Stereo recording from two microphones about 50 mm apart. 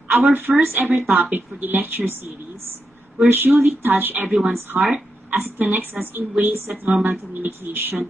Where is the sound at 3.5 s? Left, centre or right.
Centre.